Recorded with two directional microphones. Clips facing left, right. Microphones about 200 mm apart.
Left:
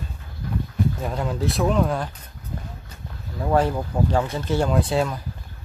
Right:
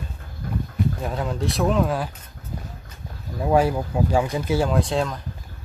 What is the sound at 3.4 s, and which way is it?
Speech, 10° right (ahead or behind).